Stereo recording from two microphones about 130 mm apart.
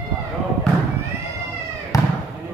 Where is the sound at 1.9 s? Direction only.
25° left (ahead or behind).